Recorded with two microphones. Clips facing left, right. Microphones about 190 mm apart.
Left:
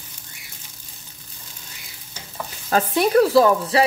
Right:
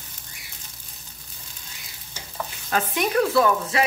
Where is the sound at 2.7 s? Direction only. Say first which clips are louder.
Left 6 dB; 35° left (ahead or behind).